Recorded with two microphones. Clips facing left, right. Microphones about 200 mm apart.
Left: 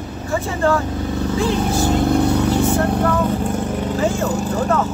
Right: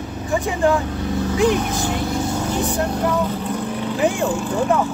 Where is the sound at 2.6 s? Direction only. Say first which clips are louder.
Left 3 dB; 15° right (ahead or behind).